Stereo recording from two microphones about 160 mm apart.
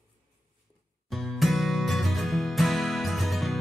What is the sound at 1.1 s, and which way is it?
Music, centre (ahead or behind).